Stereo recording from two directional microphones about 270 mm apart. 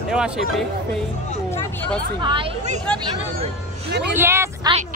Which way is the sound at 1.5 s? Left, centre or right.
Centre.